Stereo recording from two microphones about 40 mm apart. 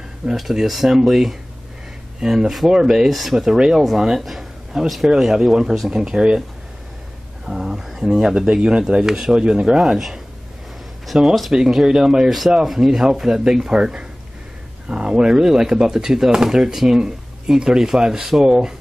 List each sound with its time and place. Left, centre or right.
0.3 s speech: centre
4.2 s a man's voice: centre; by 6.4 s right
7.4 s speech: centre
9.8 s speech: centre
11.1 s speech: right
12.3 s speech: centre
14.9 s speech: right; by 18.5 s centre
18.5 s speech: centre